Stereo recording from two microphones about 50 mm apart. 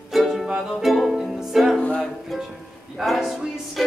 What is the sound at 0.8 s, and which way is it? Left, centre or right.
Ukulele, centre.